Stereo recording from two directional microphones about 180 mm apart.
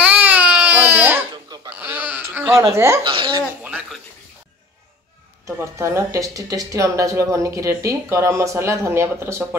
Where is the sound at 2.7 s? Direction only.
15° right (ahead or behind).